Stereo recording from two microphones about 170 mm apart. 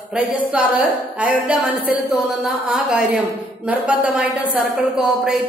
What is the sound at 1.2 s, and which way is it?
Speech, 5° right (ahead or behind).